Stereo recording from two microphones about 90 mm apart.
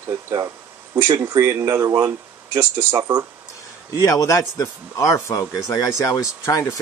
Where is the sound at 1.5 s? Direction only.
45° right (ahead or behind).